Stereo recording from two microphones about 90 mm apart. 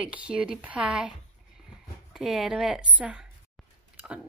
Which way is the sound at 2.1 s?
5° right (ahead or behind).